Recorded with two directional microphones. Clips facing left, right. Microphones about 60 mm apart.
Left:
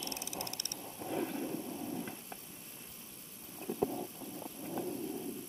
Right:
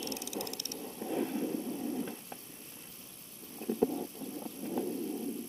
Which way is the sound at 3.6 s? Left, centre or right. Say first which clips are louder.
Right 4 dB; centre.